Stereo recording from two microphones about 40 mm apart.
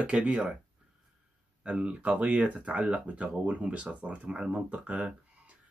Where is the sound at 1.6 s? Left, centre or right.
Right.